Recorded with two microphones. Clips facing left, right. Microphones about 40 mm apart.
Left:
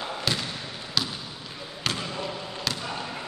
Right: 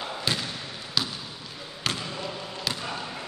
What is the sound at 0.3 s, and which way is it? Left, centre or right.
Basketball bounce, centre.